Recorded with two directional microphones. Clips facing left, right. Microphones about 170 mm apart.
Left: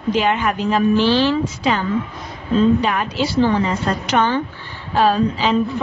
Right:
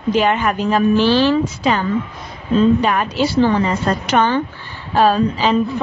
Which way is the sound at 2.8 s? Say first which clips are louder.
Right 3 dB; 50° right (ahead or behind).